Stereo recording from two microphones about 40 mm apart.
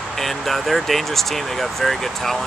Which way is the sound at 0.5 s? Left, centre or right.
Centre.